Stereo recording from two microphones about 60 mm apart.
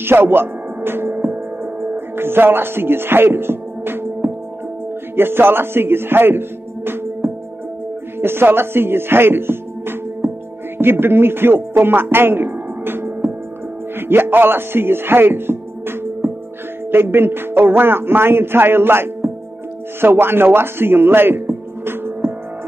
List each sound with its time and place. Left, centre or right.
0.0 s music: right
5.1 s a man's voice: right